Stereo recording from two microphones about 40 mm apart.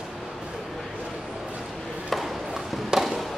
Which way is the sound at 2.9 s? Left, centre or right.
Centre.